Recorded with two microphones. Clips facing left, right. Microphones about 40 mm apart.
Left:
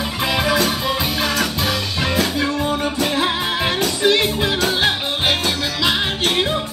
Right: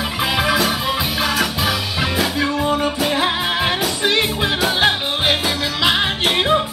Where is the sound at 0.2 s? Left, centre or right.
Centre.